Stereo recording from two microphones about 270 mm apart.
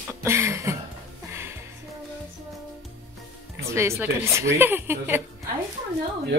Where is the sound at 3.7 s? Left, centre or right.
Centre.